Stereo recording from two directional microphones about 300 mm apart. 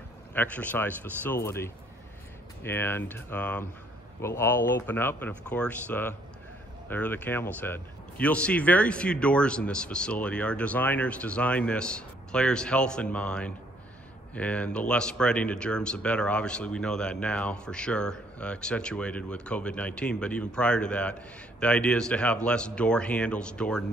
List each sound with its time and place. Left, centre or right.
0.3 s speech: centre